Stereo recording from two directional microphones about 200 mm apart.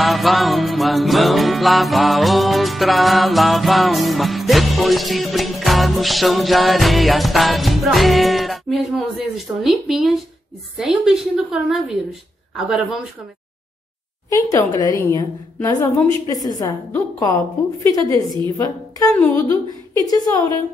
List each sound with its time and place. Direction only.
0.0 s music: centre (ahead or behind)
9.6 s a woman's voice: centre (ahead or behind)
14.3 s a woman's voice: 15° left (ahead or behind)
18.6 s a woman's voice: 20° left (ahead or behind)
19.1 s a woman's voice: 10° left (ahead or behind)
20.1 s a woman's voice: 20° left (ahead or behind)